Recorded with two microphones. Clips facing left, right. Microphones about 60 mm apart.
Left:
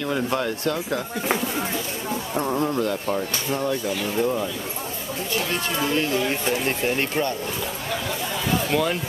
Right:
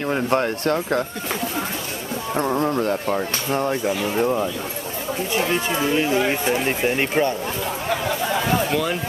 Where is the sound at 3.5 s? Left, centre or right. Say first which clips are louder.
Right 4 dB; right.